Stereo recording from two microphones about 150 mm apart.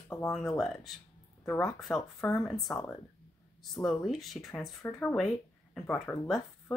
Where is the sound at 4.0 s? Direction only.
Centre (ahead or behind).